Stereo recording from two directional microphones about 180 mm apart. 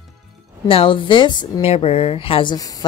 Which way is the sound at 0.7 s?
30° left (ahead or behind).